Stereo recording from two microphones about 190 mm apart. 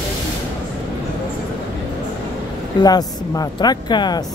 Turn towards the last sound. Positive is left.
turn(degrees=20)  # may be behind; listen again after turning